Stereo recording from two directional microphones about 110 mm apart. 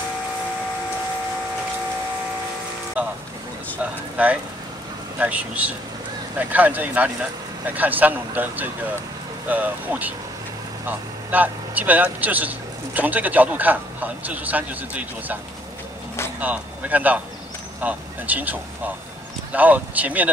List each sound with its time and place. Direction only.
3.0 s vehicle: 10° right (ahead or behind)
4.2 s speech: 15° right (ahead or behind)
16.3 s speech: 15° right (ahead or behind)